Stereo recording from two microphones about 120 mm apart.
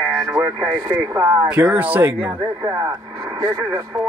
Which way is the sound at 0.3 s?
20° right (ahead or behind).